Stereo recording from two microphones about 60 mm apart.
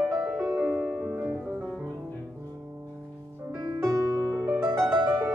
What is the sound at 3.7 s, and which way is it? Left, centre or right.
Music, right.